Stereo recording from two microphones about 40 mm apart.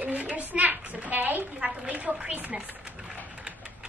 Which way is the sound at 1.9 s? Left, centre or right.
Right.